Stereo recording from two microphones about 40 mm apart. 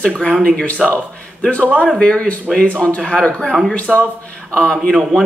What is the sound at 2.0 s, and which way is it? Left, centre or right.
Speech, left.